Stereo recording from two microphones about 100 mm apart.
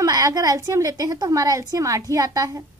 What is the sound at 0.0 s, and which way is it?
A woman's voice, 40° right (ahead or behind).